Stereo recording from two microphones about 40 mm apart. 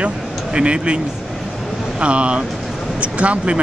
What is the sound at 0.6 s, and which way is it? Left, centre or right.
Speech, right.